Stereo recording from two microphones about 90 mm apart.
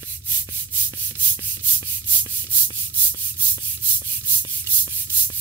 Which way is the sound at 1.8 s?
20° right (ahead or behind).